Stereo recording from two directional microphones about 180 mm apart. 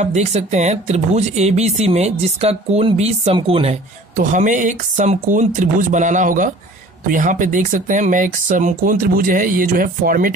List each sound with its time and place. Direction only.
0.0 s speech: 40° right (ahead or behind)
4.2 s speech: 45° right (ahead or behind)